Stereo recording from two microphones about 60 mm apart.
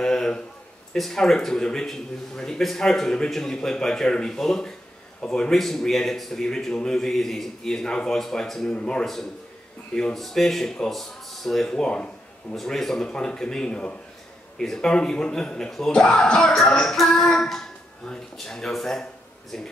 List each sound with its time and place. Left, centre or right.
0.0 s a sound: centre
0.9 s speech: centre
9.0 s a man's voice: centre
12.5 s speech: centre